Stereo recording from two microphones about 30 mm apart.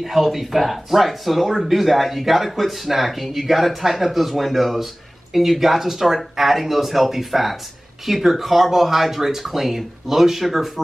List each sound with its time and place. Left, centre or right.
0.0 s speech: centre